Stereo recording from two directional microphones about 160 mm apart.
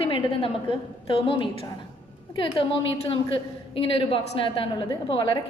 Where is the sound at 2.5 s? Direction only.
35° left (ahead or behind).